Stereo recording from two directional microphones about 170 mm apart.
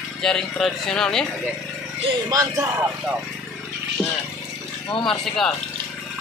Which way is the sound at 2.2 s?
20° right (ahead or behind).